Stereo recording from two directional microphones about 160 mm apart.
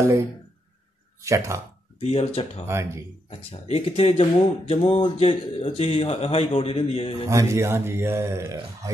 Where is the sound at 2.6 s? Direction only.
15° right (ahead or behind).